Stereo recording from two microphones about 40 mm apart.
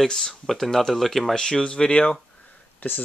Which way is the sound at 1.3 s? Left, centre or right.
Centre.